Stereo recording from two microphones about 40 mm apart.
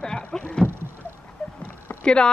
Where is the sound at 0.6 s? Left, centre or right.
Right.